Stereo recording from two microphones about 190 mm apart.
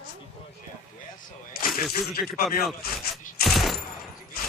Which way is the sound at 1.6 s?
55° left (ahead or behind).